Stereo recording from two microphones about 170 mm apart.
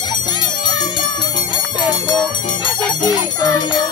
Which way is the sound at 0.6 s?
25° left (ahead or behind).